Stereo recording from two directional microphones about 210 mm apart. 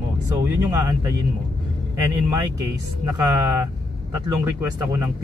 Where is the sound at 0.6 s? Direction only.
15° right (ahead or behind).